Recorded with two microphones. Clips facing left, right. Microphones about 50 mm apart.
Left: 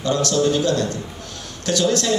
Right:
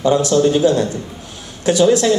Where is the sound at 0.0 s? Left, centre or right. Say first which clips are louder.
Right 6 dB; centre.